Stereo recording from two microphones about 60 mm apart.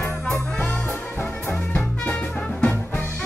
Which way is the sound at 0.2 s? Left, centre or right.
Left.